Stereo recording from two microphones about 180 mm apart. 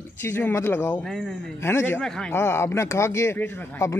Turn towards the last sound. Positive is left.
turn(degrees=10)  # may be behind; listen again after turning